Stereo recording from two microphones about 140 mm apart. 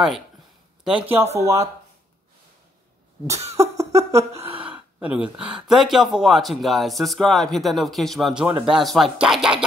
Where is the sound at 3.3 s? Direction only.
50° right (ahead or behind).